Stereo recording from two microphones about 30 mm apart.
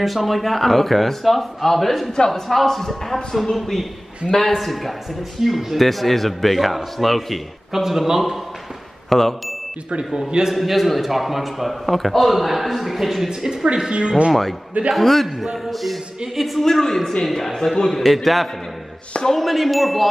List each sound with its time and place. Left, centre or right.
0.0 s a man's voice: centre
2.1 s speech: centre
2.4 s a man's voice: centre
5.4 s a man's voice: centre
5.8 s a man's voice: centre
7.8 s a man's voice: centre
9.1 s a man's voice: centre
10.1 s a man's voice: right
10.5 s a man's voice: centre
13.3 s a man's voice: right
13.7 s speech: right
15.0 s a man's voice: centre
16.6 s a man's voice: centre